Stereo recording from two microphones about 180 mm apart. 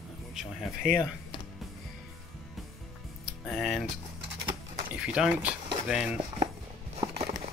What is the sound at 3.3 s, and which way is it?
Speech, centre (ahead or behind).